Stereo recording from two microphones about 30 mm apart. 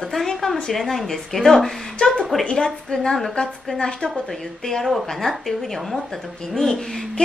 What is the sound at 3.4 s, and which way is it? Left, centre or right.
Speech, left.